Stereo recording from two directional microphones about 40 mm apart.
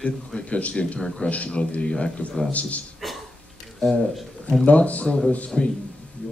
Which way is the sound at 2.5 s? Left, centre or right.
Left.